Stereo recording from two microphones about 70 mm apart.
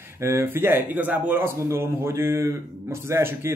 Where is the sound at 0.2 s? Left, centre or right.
Right.